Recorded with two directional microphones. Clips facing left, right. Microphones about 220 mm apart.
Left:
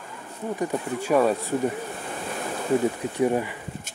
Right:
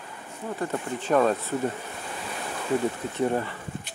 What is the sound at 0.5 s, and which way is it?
Speech, 10° left (ahead or behind).